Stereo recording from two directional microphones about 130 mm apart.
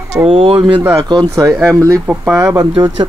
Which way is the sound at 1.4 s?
25° right (ahead or behind).